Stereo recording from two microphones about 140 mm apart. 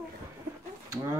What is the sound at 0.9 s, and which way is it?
Speech, 15° right (ahead or behind).